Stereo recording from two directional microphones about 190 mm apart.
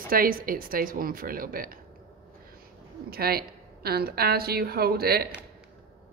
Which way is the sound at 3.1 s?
55° right (ahead or behind).